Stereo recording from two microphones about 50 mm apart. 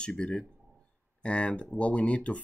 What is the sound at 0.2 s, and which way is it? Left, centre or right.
Speech, centre.